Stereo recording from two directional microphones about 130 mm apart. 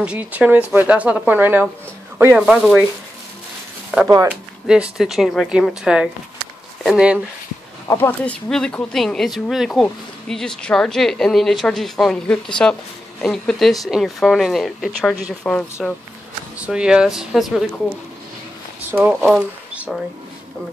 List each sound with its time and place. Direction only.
0.0 s speech: 10° right (ahead or behind)
3.9 s speech: 5° right (ahead or behind)
7.9 s speech: 15° left (ahead or behind)
16.5 s speech: 5° right (ahead or behind)
18.9 s speech: 15° right (ahead or behind)